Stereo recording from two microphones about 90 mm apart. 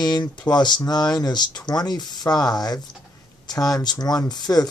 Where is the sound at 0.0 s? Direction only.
55° left (ahead or behind).